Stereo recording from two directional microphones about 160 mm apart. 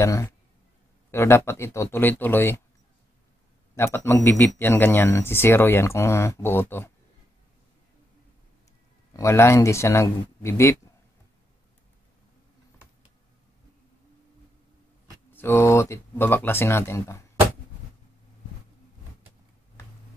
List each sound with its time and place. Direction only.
0.0 s speech: 20° left (ahead or behind)
3.7 s speech: 15° left (ahead or behind)
9.1 s speech: 20° left (ahead or behind)
15.3 s speech: 15° left (ahead or behind)